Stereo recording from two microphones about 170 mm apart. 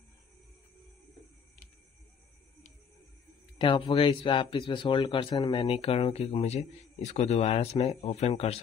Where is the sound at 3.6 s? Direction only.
30° left (ahead or behind).